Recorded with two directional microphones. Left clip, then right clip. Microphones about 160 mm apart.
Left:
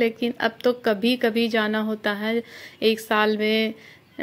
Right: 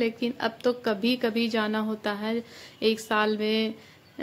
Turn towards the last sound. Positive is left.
turn(degrees=15)  # may be behind; listen again after turning